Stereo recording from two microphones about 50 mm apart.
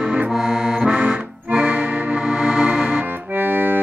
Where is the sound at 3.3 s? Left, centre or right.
Right.